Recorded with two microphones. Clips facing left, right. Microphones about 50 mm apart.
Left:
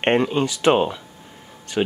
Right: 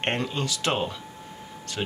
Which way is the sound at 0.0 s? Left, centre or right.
Left.